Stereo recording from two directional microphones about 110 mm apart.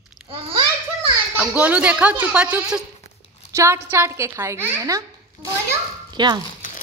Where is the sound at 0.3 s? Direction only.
55° right (ahead or behind).